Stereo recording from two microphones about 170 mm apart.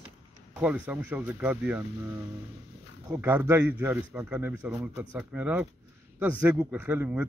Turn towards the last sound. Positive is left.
turn(degrees=-10)  # may be behind; listen again after turning